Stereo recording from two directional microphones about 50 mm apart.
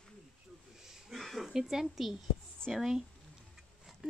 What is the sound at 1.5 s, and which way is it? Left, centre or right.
A woman's voice, centre.